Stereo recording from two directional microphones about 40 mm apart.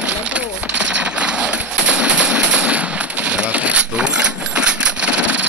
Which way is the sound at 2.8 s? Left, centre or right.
Right.